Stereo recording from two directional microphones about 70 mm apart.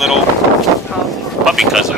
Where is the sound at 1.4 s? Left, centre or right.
Centre.